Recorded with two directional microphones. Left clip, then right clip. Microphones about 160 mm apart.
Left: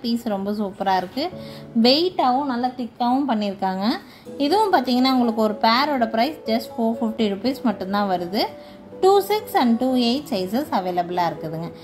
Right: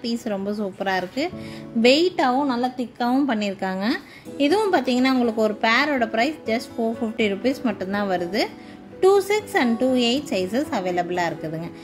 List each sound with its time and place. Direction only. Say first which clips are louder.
0.0 s a woman's voice: left 2 dB; 20° right (ahead or behind)
2.1 s a woman's voice: left 1 dB; 45° right (ahead or behind)
3.3 s a woman's voice: left 2 dB; 25° right (ahead or behind)